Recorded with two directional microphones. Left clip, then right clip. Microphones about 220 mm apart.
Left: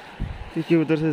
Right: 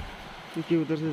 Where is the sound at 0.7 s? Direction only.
45° left (ahead or behind).